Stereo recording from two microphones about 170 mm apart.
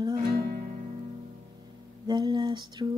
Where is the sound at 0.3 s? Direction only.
60° right (ahead or behind).